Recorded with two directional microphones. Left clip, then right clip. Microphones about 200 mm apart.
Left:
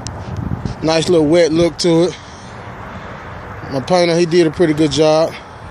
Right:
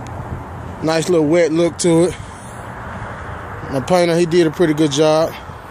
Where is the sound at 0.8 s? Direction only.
15° left (ahead or behind).